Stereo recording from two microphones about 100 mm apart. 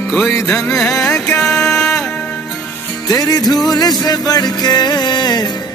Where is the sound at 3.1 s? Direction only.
40° left (ahead or behind).